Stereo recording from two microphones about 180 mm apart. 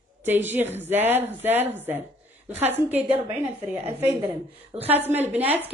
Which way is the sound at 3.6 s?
10° right (ahead or behind).